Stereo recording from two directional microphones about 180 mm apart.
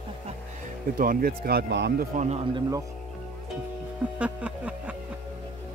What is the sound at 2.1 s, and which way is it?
Speech, 40° right (ahead or behind).